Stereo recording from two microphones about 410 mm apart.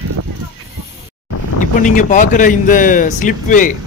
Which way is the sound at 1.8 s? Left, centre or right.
Centre.